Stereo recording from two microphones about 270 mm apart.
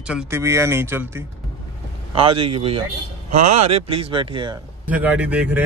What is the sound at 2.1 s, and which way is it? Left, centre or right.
Speech, centre.